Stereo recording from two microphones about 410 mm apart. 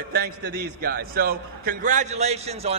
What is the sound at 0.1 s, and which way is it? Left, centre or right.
A man's voice, right.